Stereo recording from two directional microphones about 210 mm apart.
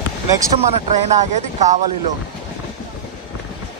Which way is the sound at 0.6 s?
35° right (ahead or behind).